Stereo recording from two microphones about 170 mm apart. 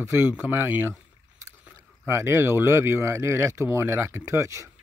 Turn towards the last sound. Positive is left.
turn(degrees=-20)  # may be behind; listen again after turning